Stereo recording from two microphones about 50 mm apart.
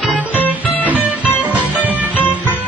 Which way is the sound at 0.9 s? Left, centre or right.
Right.